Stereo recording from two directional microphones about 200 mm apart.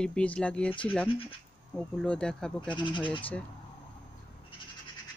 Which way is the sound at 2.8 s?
25° left (ahead or behind).